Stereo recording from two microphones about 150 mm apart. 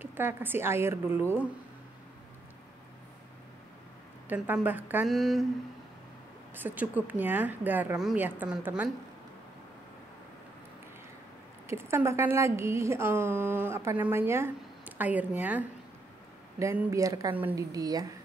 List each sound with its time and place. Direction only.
0.0 s speech: 15° right (ahead or behind)
4.6 s speech: 10° right (ahead or behind)
5.0 s a sound: centre (ahead or behind)
6.5 s speech: 10° right (ahead or behind)
11.6 s speech: 15° right (ahead or behind)
17.7 s speech: 25° right (ahead or behind)